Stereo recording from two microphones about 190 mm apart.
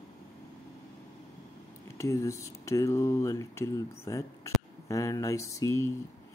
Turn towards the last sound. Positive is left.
turn(degrees=15)  # may be behind; listen again after turning